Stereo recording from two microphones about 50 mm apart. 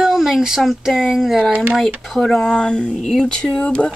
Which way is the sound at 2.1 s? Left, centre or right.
Centre.